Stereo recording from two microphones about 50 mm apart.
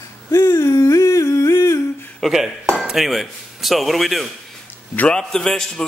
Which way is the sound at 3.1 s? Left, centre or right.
Centre.